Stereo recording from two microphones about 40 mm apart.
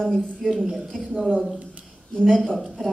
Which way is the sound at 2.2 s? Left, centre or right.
Centre.